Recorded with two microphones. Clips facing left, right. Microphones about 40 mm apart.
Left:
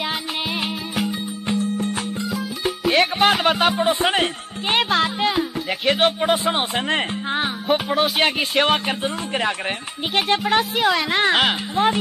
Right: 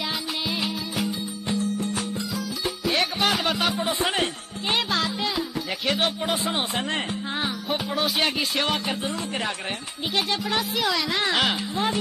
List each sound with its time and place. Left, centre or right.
0.6 s music: left
10.1 s speech: left